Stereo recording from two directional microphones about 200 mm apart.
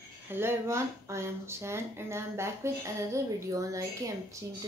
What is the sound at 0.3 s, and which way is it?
Speech, 10° right (ahead or behind).